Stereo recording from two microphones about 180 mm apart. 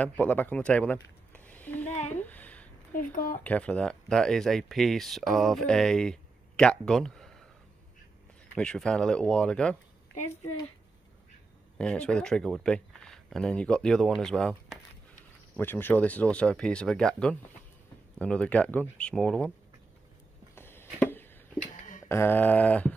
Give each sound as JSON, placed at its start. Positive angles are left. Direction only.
{"t": 0.0, "sound": "speech", "side_deg": 10}
{"t": 2.1, "sound": "a sound", "side_deg": 10}
{"t": 2.9, "sound": "speech", "side_deg": 50}
{"t": 3.4, "sound": "speech", "side_deg": 5}
{"t": 8.5, "sound": "speech", "side_deg": 5}
{"t": 11.8, "sound": "speech", "side_deg": 5}
{"t": 20.5, "sound": "a sound", "side_deg": 15}
{"t": 22.0, "sound": "speech", "side_deg": 15}